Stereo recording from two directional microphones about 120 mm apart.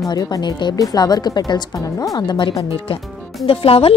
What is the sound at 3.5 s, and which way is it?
Speech, 50° left (ahead or behind).